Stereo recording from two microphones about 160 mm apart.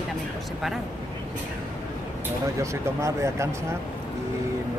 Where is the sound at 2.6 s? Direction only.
20° right (ahead or behind).